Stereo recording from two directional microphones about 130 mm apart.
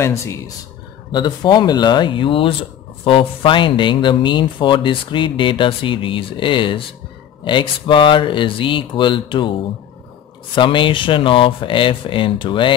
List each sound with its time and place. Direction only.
0.0 s speech: 20° left (ahead or behind)
1.1 s speech: 35° left (ahead or behind)
10.5 s speech: 40° left (ahead or behind)